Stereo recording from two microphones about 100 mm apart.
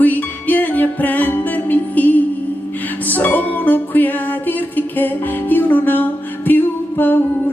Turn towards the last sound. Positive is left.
turn(degrees=20)  # may be behind; listen again after turning